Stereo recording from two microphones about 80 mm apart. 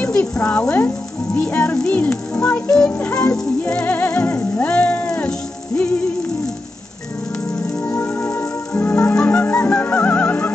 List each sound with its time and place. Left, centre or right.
0.0 s speech: centre
3.8 s music: left
7.8 s music: left